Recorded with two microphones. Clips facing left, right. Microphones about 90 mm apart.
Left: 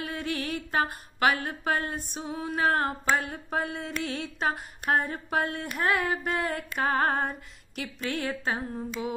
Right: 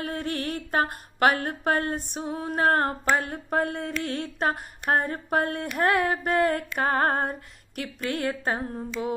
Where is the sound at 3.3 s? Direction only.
55° right (ahead or behind).